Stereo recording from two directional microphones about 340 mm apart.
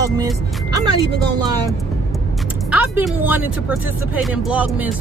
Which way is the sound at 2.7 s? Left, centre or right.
Centre.